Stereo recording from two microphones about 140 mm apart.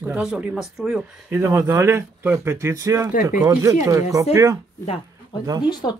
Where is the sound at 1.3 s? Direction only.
20° right (ahead or behind).